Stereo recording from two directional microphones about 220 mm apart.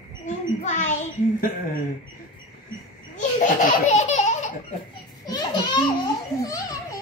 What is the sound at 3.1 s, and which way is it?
Laughter, 35° left (ahead or behind).